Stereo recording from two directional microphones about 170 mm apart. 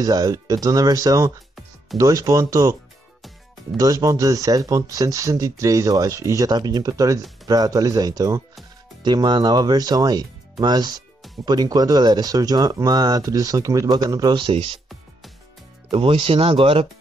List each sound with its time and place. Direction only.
0.0 s speech: 20° right (ahead or behind)
15.9 s speech: 35° right (ahead or behind)